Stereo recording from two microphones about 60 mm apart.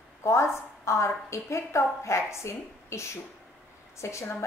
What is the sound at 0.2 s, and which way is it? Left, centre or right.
A woman's voice, left.